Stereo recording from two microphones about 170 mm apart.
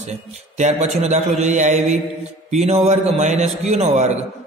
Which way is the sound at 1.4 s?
45° right (ahead or behind).